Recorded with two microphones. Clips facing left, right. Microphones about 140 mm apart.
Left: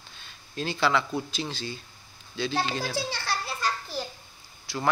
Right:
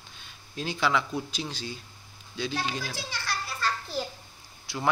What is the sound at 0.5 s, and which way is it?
A man's voice, 10° right (ahead or behind).